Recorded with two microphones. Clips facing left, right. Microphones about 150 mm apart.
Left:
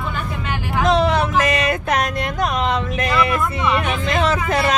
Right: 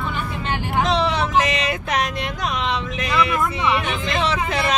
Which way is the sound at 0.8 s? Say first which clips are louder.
Left 7 dB; 50° left (ahead or behind).